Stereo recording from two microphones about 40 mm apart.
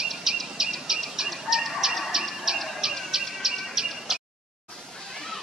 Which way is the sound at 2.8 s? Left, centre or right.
Centre.